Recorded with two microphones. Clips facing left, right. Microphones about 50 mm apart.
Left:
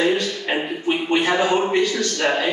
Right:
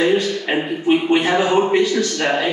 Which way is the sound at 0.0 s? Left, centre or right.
Centre.